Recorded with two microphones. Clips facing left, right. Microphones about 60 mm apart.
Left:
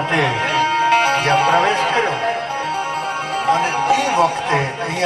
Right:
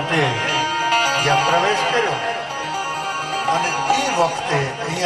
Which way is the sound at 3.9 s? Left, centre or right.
Left.